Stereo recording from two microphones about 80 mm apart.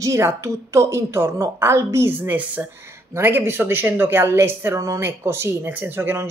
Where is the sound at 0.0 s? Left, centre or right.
Right.